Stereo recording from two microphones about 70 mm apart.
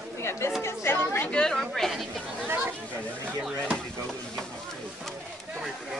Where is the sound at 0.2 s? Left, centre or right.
Left.